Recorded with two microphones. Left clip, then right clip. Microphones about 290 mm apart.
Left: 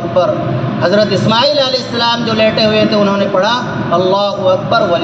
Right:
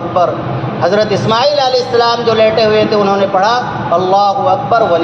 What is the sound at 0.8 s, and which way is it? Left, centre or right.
A man's voice, right.